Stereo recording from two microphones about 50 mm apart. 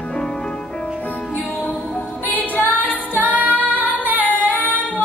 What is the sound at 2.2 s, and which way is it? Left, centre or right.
Music, left.